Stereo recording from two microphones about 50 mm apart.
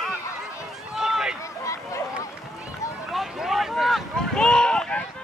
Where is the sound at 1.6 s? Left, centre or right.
Left.